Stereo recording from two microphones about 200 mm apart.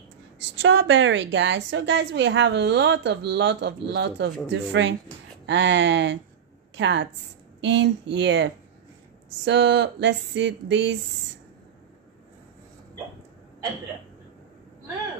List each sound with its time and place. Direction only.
0.6 s a woman's voice: 65° right (ahead or behind)